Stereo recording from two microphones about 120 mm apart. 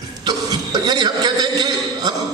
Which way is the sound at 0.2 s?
35° right (ahead or behind).